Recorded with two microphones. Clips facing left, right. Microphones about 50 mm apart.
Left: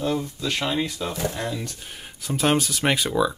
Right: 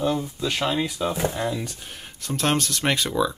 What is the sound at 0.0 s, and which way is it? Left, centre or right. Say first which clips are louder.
Speech: right 1 dB; centre.